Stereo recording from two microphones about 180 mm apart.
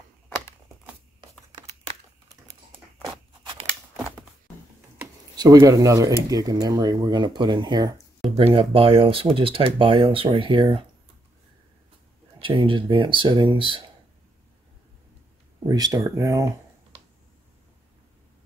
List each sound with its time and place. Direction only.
5.3 s speech: 20° right (ahead or behind)
12.4 s speech: 30° right (ahead or behind)
15.7 s speech: 20° right (ahead or behind)